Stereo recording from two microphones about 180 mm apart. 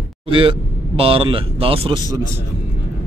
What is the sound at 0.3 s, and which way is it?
Speech, 30° right (ahead or behind).